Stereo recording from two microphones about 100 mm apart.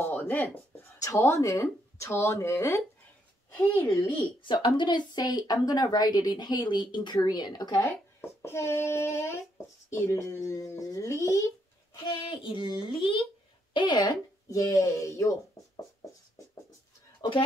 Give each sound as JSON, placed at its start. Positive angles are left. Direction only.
{"t": 0.0, "sound": "a sound", "side_deg": 20}
{"t": 0.9, "sound": "speech", "side_deg": 30}
{"t": 4.4, "sound": "a woman's voice", "side_deg": 55}
{"t": 7.8, "sound": "speech", "side_deg": 25}
{"t": 12.0, "sound": "a child's voice", "side_deg": 60}
{"t": 13.7, "sound": "speech", "side_deg": 45}